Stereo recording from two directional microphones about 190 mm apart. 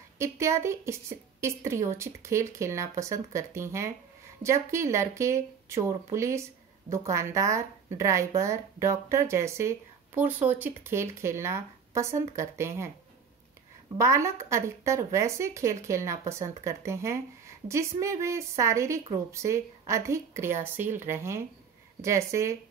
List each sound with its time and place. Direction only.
0.2 s speech: 15° right (ahead or behind)
13.9 s speech: 15° right (ahead or behind)